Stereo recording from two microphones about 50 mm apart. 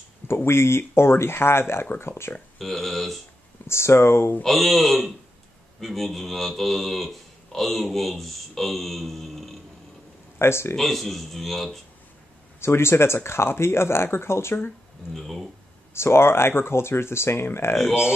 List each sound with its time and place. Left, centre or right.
0.5 s speech: left
2.6 s speech: centre
3.6 s speech: left
4.4 s speech: centre
10.4 s speech: left
10.8 s speech: centre
12.5 s speech: left
15.1 s speech: centre
15.9 s speech: left